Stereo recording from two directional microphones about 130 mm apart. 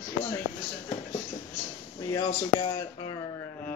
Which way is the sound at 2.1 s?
20° left (ahead or behind).